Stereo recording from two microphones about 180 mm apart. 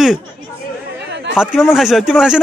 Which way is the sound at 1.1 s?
75° right (ahead or behind).